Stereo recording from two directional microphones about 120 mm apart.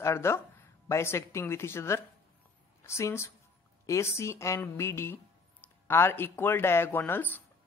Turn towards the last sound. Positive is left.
turn(degrees=15)  # may be behind; listen again after turning